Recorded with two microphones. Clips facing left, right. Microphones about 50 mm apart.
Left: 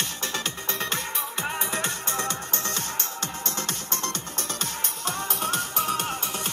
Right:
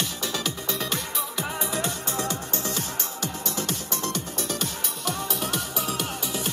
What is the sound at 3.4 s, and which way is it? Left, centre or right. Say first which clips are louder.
Music: right 2 dB; left.